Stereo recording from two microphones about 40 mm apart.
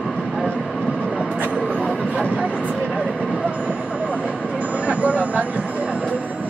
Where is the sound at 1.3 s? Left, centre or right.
Right.